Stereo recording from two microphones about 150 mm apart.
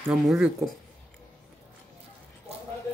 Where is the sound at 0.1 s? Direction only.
5° right (ahead or behind).